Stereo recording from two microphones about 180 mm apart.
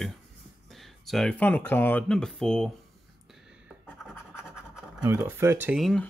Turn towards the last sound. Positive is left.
turn(degrees=0)  # may be behind; listen again after turning